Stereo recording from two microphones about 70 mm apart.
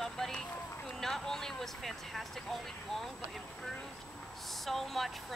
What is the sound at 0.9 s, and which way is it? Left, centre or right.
Speech, centre.